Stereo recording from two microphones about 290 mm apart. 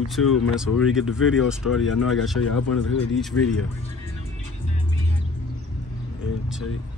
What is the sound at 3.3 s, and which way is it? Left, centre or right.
Speech, left.